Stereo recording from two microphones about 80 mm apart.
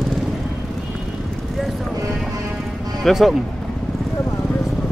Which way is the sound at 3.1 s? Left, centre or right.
Centre.